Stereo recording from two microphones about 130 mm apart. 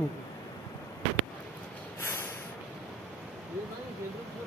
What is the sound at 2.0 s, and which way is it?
Snort, 20° left (ahead or behind).